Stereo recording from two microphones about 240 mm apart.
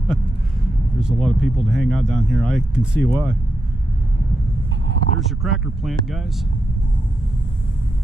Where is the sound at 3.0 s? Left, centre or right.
Centre.